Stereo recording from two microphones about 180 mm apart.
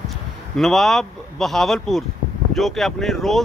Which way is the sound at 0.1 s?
Centre (ahead or behind).